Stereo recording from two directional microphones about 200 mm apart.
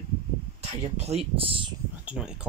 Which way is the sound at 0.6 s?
30° right (ahead or behind).